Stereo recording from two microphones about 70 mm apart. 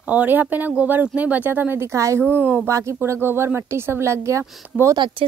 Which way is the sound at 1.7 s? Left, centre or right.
Right.